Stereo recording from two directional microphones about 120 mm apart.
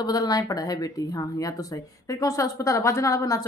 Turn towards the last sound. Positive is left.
turn(degrees=25)  # may be behind; listen again after turning